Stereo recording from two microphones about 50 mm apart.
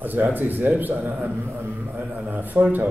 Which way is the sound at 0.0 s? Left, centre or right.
Right.